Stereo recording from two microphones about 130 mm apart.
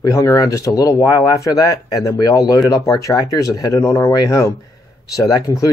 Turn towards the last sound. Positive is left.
turn(degrees=25)  # may be behind; listen again after turning